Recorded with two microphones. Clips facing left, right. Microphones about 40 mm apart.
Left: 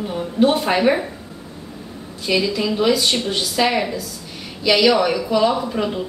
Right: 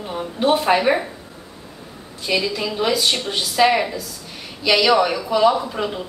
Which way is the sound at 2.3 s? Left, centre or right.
Centre.